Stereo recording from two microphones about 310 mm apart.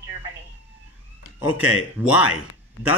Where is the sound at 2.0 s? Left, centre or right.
Centre.